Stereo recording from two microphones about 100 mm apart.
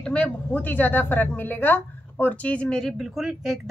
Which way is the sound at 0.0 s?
10° left (ahead or behind).